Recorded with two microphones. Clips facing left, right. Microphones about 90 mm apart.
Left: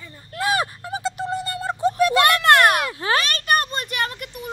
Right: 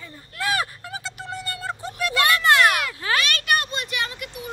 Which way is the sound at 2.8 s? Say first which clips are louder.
Left 2 dB; 30° left (ahead or behind).